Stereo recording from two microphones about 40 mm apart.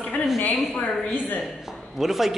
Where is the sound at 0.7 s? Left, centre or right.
Left.